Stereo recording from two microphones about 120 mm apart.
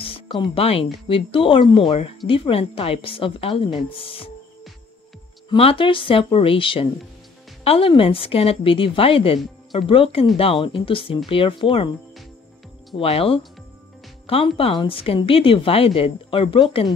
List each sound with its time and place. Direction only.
0.0 s a woman's voice: 45° left (ahead or behind)
5.5 s a woman's voice: 50° left (ahead or behind)
12.9 s a woman's voice: 55° left (ahead or behind)